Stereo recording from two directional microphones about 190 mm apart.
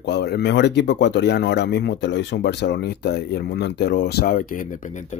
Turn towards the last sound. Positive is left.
turn(degrees=40)  # may be behind; listen again after turning